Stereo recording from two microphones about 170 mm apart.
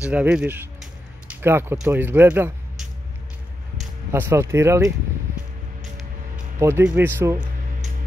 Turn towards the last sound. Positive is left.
turn(degrees=-10)  # may be behind; listen again after turning